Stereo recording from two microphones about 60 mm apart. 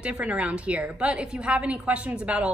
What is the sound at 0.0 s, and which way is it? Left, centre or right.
A woman's voice, right.